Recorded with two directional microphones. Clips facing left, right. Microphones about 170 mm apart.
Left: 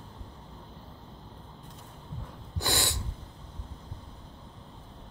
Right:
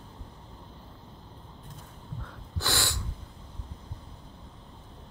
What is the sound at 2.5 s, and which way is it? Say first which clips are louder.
Snort: left 1 dB; 20° left (ahead or behind).